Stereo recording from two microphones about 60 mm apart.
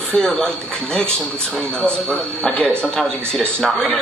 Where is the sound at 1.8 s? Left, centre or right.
Centre.